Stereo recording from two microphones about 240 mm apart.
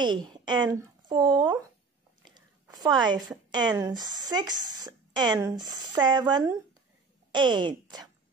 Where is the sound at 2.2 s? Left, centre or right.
Centre.